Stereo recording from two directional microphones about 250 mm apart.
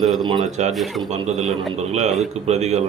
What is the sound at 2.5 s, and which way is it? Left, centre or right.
Speech, right.